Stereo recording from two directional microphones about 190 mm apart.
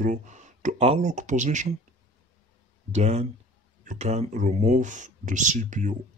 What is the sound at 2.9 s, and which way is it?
Speech, 35° right (ahead or behind).